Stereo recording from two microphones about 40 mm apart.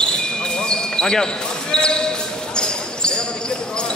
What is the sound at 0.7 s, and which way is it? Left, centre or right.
Basketball bounce, left.